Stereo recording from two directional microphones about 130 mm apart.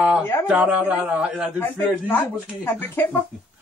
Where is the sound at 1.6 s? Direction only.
15° left (ahead or behind).